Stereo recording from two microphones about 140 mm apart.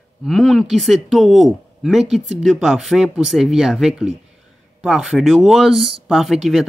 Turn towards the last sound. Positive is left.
turn(degrees=0)  # may be behind; listen again after turning